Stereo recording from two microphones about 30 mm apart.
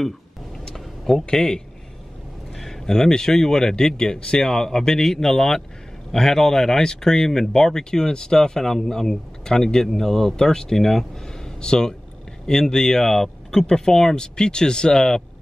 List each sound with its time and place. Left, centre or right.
0.7 s vehicle: centre
1.3 s speech: centre
2.6 s speech: centre
4.4 s a man's voice: centre
10.3 s speech: left
10.8 s speech: centre
11.6 s speech: left
13.7 s speech: left